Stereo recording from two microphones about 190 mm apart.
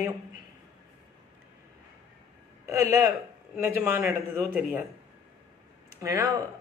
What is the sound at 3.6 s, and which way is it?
Speech, 10° right (ahead or behind).